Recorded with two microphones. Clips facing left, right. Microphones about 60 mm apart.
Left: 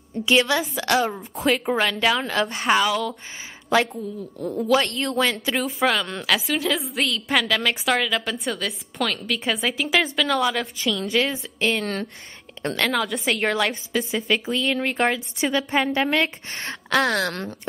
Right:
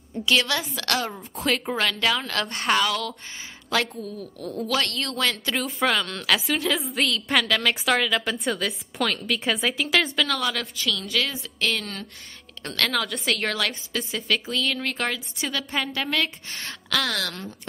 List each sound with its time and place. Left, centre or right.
0.2 s a woman's voice: left
3.7 s a woman's voice: left
11.1 s a woman's voice: left
12.9 s a woman's voice: centre
13.3 s a woman's voice: centre
16.4 s speech: left